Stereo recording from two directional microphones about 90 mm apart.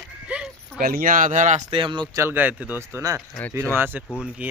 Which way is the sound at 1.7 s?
75° right (ahead or behind).